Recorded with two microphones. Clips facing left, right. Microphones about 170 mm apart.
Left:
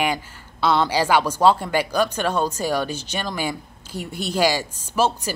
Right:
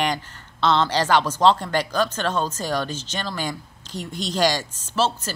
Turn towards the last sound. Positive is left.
turn(degrees=10)  # may be behind; listen again after turning